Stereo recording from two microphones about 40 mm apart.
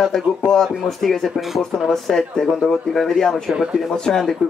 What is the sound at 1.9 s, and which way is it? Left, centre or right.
Speech, centre.